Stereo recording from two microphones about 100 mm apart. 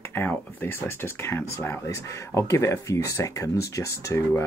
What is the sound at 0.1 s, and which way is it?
Speech, 20° left (ahead or behind).